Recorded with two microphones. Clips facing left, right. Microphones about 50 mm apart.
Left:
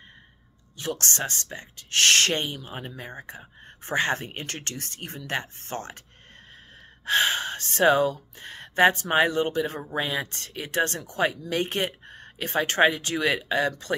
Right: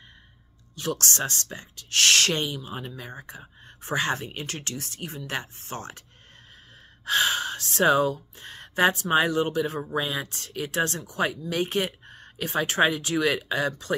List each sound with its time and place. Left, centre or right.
0.7 s speech: left
7.1 s gasp: left
9.1 s speech: left